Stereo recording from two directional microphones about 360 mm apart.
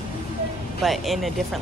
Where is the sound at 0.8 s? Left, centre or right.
Centre.